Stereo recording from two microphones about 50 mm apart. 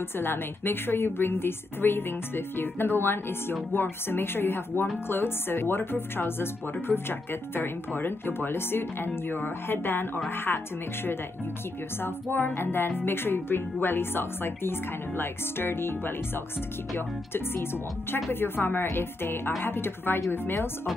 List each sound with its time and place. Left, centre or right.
0.2 s speech: left
12.0 s speech: left